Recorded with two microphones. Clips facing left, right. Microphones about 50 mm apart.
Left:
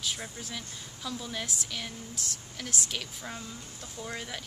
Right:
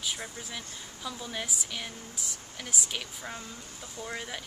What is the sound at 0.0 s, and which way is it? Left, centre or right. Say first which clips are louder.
Speech: even; centre.